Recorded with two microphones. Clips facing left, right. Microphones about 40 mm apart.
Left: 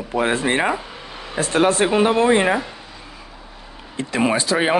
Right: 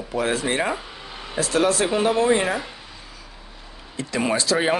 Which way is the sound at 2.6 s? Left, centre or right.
Centre.